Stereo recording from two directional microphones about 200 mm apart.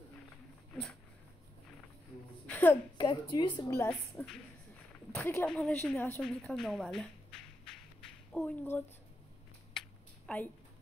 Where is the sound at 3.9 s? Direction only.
5° left (ahead or behind).